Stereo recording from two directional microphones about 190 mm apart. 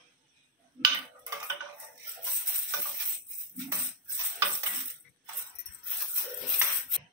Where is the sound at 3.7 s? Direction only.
15° right (ahead or behind).